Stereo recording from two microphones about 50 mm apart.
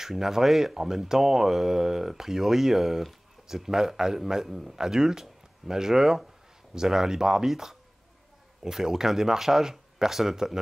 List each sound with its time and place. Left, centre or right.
0.0 s speech: centre